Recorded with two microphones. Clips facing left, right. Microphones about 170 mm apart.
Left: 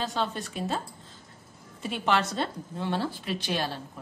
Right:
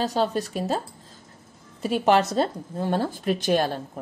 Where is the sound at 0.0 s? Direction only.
40° right (ahead or behind).